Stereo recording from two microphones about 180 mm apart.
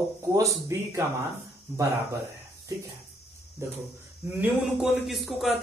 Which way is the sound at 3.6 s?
15° right (ahead or behind).